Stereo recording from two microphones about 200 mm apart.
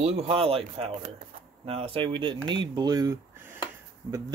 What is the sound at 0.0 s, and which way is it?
Speech, 30° right (ahead or behind).